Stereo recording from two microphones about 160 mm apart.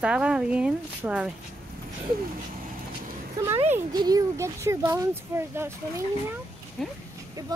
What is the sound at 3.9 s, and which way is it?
Speech, 25° right (ahead or behind).